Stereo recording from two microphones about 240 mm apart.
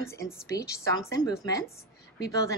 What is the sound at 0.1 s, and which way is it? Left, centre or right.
A woman's voice, centre.